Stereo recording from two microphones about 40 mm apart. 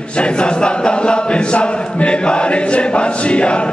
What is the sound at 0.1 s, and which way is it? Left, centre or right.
Chant, left.